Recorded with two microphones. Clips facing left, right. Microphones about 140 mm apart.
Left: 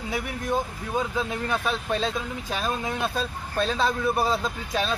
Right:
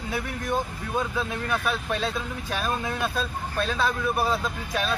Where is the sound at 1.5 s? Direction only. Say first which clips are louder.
Left 1 dB; 20° left (ahead or behind).